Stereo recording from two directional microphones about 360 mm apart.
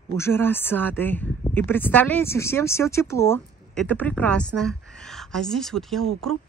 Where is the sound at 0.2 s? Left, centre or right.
Centre.